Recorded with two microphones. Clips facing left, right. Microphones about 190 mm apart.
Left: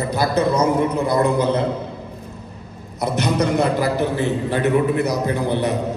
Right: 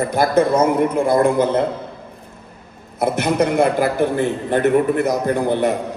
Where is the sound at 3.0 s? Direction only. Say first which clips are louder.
Right 3 dB; 55° right (ahead or behind).